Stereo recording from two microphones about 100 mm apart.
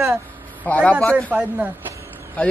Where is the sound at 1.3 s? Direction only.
15° right (ahead or behind).